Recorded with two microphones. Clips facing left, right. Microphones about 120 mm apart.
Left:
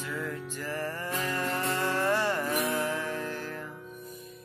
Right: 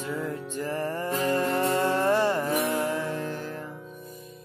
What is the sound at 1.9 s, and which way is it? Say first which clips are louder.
Music: right 5 dB; 15° right (ahead or behind).